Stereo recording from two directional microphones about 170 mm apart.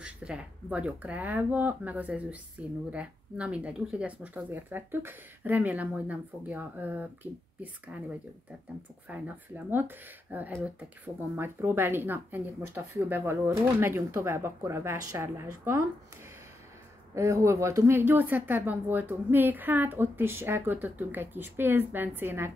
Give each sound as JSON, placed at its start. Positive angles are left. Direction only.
{"t": 0.0, "sound": "a woman's voice", "side_deg": -5}
{"t": 9.1, "sound": "a woman's voice", "side_deg": -10}
{"t": 17.1, "sound": "a woman's voice", "side_deg": -15}